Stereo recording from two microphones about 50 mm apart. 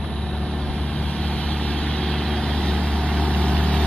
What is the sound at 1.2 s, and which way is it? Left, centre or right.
Vehicle, left.